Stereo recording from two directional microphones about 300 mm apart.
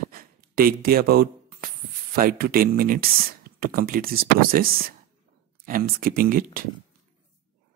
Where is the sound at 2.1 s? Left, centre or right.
Right.